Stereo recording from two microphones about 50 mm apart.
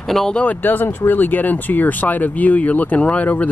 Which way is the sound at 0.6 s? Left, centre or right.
Left.